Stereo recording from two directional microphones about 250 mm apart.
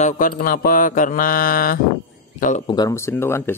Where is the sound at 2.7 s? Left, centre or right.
Centre.